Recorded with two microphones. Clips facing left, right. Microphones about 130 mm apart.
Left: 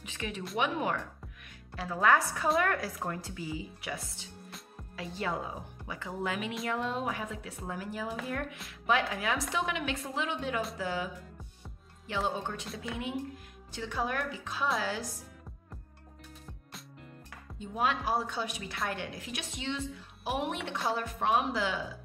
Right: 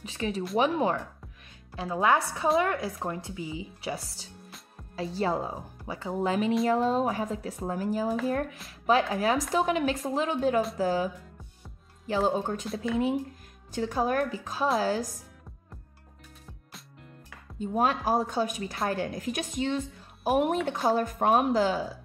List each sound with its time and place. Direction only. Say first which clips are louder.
0.0 s speech: right 7 dB; 30° right (ahead or behind)
3.9 s speech: right 4 dB; 35° right (ahead or behind)
12.1 s speech: right 7 dB; 40° right (ahead or behind)
12.6 s speech: right 8 dB; centre (ahead or behind)
13.7 s a woman's voice: right 7 dB; 45° right (ahead or behind)
17.6 s a woman's voice: right 5 dB; 40° right (ahead or behind)